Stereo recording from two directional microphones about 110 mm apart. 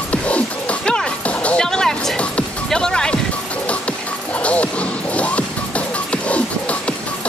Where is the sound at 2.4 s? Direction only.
5° left (ahead or behind).